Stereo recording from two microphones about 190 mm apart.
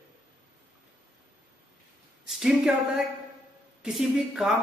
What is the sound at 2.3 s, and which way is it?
A man's voice, centre (ahead or behind).